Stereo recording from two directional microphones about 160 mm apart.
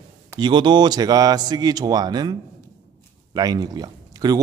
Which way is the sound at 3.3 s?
25° right (ahead or behind).